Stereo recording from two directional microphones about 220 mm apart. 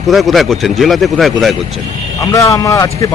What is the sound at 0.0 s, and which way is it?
Speech, centre (ahead or behind).